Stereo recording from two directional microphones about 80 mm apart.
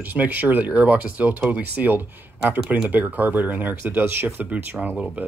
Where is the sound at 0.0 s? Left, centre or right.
Right.